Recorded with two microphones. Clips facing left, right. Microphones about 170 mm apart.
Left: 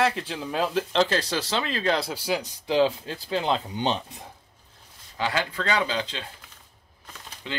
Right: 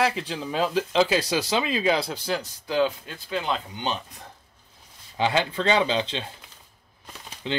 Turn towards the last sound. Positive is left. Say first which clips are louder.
# right 5 dB
turn(degrees=-25)  # may be behind; listen again after turning